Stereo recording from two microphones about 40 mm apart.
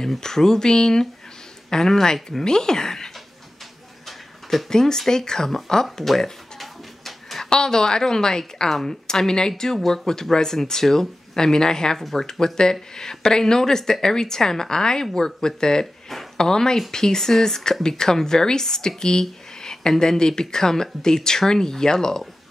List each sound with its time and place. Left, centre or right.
0.2 s speech: centre
4.6 s speech: centre
6.6 s a sound: centre
7.4 s speech: centre